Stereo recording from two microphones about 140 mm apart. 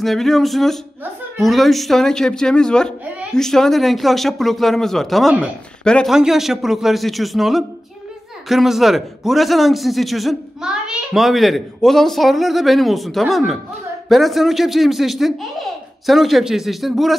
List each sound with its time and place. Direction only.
0.0 s a man's voice: centre (ahead or behind)